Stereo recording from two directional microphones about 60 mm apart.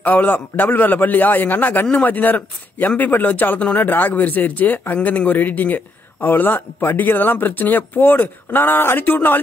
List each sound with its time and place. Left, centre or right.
0.0 s a man's voice: left